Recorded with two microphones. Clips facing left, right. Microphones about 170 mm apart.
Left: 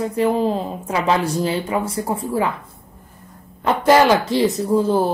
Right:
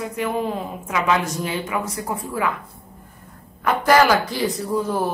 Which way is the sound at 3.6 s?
25° left (ahead or behind).